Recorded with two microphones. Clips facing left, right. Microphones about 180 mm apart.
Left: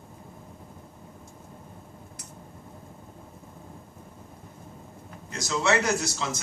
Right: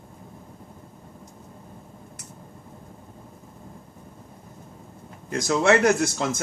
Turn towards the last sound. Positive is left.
turn(degrees=-50)  # may be behind; listen again after turning